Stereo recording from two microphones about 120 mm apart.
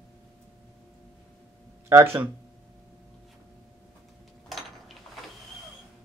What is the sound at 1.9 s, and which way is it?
Speech, 20° right (ahead or behind).